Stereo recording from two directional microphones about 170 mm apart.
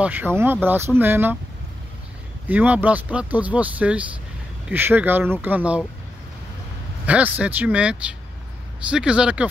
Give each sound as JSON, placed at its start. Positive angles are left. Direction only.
{"t": 0.0, "sound": "speech", "side_deg": -10}
{"t": 2.4, "sound": "speech", "side_deg": -10}
{"t": 7.1, "sound": "speech", "side_deg": -10}